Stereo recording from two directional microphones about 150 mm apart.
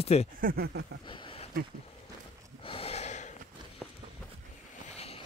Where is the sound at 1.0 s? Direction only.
35° left (ahead or behind).